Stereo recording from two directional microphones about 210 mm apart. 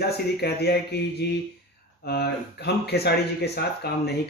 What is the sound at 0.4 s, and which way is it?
Speech, 50° left (ahead or behind).